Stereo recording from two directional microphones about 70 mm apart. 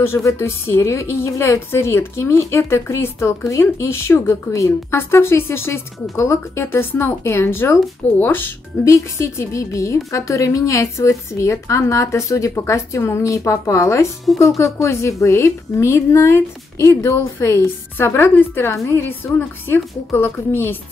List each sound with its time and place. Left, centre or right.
0.0 s a woman's voice: left
4.9 s a woman's voice: left
8.8 s a woman's voice: left
14.3 s speech: centre
14.6 s a woman's voice: left